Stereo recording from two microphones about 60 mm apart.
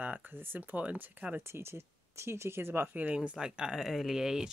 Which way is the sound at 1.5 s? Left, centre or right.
Right.